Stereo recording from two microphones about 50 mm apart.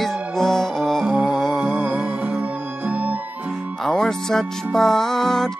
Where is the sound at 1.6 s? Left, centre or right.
Right.